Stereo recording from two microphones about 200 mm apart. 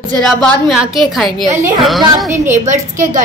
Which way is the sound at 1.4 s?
10° right (ahead or behind).